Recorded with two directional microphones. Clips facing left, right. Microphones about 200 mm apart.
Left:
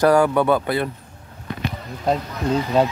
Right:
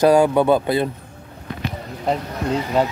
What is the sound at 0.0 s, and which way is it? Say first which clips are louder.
Speech: right 2 dB; 15° right (ahead or behind).